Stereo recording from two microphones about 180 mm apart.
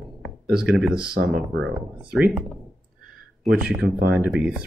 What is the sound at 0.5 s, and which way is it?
Speech, 5° right (ahead or behind).